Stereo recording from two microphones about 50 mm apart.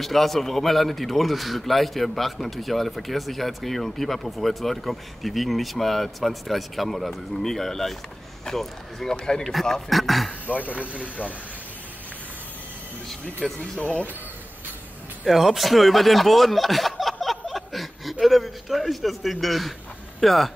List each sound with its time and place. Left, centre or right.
0.0 s a man's voice: centre
9.4 s a man's voice: centre
10.9 s speech: right
13.6 s speech: left
15.2 s a man's voice: centre